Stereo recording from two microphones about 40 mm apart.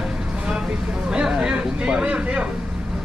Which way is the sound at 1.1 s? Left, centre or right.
Centre.